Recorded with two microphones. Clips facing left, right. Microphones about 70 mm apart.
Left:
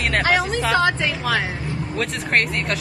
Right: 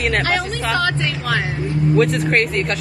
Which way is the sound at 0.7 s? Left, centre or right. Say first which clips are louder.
Left 1 dB; left.